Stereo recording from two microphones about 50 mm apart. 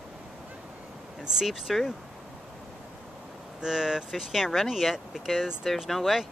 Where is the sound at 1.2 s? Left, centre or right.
Centre.